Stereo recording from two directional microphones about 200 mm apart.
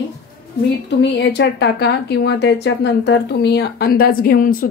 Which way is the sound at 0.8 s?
60° left (ahead or behind).